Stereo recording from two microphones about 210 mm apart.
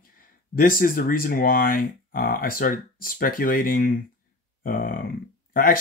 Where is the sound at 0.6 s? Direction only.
45° left (ahead or behind).